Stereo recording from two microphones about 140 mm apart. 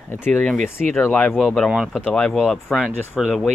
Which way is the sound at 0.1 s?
10° left (ahead or behind).